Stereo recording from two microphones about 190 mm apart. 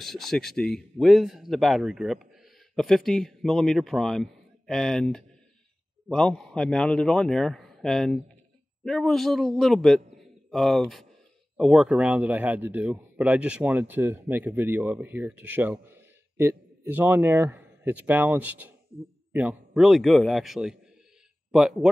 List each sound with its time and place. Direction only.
0.0 s a man's voice: centre (ahead or behind)